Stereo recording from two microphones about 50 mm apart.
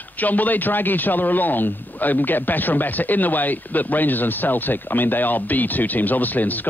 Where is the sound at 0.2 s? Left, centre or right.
Left.